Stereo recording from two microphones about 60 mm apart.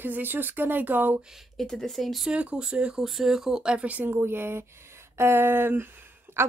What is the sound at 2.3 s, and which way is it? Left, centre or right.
Speech, centre.